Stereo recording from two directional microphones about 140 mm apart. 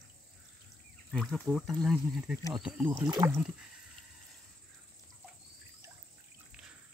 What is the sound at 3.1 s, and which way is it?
Speech, 25° right (ahead or behind).